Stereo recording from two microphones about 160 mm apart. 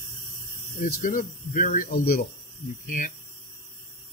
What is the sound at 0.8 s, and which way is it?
Speech, 60° left (ahead or behind).